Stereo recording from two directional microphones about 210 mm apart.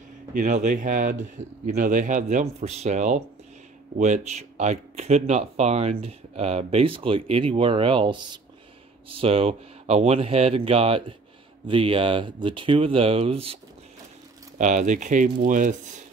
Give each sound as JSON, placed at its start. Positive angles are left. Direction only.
{"t": 0.3, "sound": "speech", "side_deg": -35}
{"t": 14.6, "sound": "speech", "side_deg": -35}